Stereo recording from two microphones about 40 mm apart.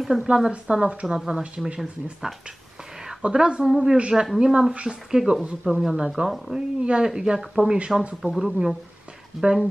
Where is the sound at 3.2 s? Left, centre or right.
Right.